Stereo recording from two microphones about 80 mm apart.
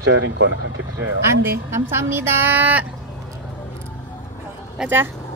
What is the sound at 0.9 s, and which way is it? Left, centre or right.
A woman's voice, right.